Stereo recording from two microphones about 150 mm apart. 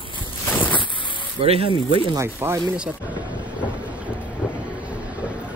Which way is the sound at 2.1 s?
15° right (ahead or behind).